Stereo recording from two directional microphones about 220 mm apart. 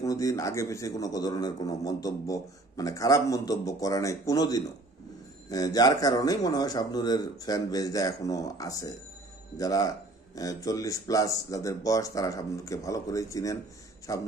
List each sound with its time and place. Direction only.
0.0 s a man's voice: 15° left (ahead or behind)